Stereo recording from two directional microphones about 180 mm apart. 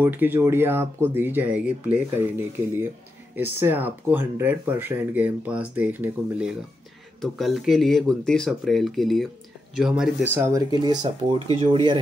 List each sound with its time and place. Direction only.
0.0 s speech: 10° right (ahead or behind)
3.3 s speech: 10° right (ahead or behind); by 12.0 s 30° right (ahead or behind)